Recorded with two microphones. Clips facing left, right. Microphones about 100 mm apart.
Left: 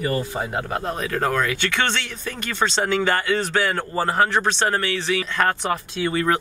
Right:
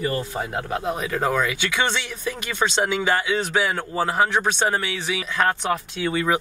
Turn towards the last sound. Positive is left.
turn(degrees=-5)  # may be behind; listen again after turning